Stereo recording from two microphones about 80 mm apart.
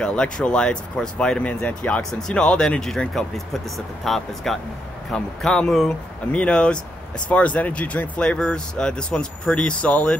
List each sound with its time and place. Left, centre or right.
0.0 s speech: centre